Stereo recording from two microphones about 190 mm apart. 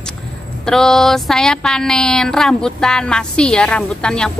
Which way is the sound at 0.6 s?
Centre (ahead or behind).